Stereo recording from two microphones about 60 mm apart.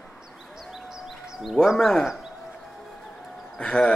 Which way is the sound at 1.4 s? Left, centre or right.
Centre.